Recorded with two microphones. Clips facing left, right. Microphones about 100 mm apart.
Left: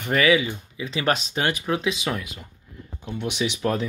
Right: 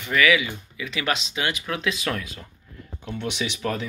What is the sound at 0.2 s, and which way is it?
Speech, 35° left (ahead or behind).